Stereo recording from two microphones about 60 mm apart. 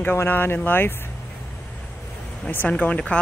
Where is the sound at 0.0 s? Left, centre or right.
Left.